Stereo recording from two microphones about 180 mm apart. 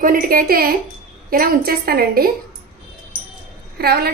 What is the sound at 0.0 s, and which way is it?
A woman's voice, 50° right (ahead or behind).